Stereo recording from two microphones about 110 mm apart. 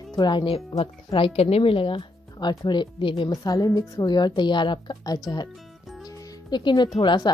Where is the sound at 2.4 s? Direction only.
40° left (ahead or behind).